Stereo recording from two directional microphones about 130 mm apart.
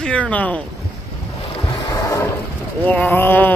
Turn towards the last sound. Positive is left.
turn(degrees=15)  # may be behind; listen again after turning